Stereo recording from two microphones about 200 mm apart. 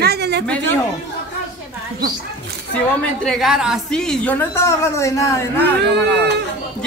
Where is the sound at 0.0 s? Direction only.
55° right (ahead or behind).